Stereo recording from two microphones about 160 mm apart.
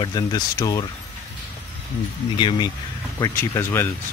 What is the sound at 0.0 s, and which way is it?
Speech, 25° left (ahead or behind).